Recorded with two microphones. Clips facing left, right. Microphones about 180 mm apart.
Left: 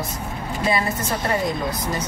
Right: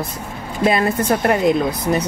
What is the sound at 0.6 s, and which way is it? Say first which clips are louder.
Speech: right 6 dB; 55° right (ahead or behind).